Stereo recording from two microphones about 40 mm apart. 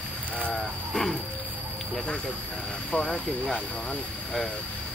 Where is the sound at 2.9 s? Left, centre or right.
Centre.